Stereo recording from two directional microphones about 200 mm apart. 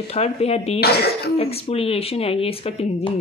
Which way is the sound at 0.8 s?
55° left (ahead or behind).